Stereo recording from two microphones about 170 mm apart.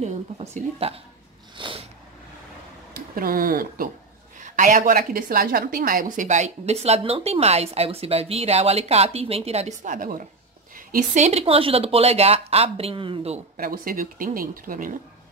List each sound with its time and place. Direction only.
0.0 s a woman's voice: 45° right (ahead or behind)
1.6 s a sound: 30° right (ahead or behind)
3.2 s a woman's voice: 60° right (ahead or behind); by 13.4 s 35° right (ahead or behind)
13.6 s speech: 55° right (ahead or behind)